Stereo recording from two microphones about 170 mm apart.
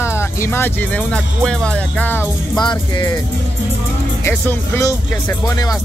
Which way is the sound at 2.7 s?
25° left (ahead or behind).